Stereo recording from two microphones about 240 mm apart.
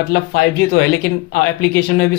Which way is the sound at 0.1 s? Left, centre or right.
Left.